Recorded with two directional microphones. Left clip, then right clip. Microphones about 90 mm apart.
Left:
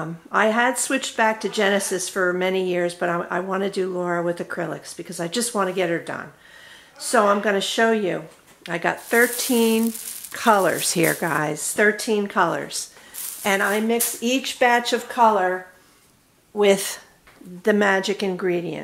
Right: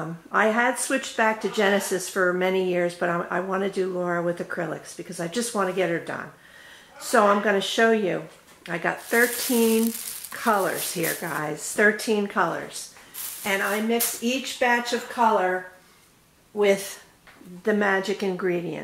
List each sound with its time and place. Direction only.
0.0 s speech: 25° left (ahead or behind); by 11.4 s 60° left (ahead or behind)
11.5 s speech: 30° left (ahead or behind)
13.4 s speech: 55° left (ahead or behind)
14.2 s speech: 35° left (ahead or behind)
16.5 s speech: 35° left (ahead or behind)